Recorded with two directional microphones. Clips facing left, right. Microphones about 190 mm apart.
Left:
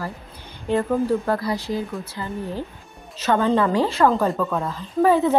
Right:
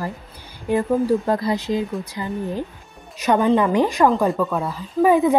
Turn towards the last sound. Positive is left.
turn(degrees=-15)  # may be behind; listen again after turning